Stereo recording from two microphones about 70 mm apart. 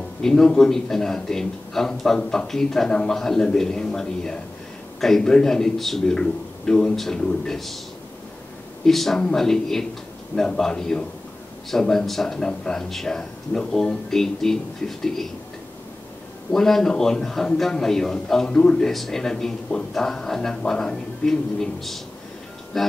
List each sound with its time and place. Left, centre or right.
0.2 s a man's voice: centre
8.8 s a man's voice: centre
16.5 s a man's voice: centre